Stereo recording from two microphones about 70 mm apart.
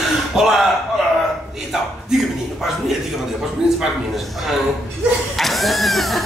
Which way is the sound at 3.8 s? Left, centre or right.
Centre.